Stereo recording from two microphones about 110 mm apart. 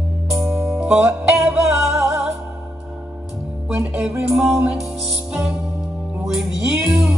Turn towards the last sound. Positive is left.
turn(degrees=-5)  # may be behind; listen again after turning